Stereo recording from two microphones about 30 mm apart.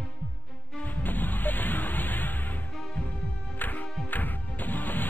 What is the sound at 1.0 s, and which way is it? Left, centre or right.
Music, left.